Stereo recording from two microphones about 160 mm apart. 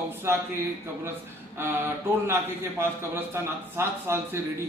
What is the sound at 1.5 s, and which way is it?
A man's voice, 15° right (ahead or behind).